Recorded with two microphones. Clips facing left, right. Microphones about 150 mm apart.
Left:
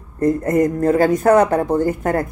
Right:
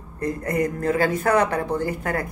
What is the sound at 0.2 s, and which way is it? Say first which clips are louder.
Speech: left 8 dB; 45° left (ahead or behind).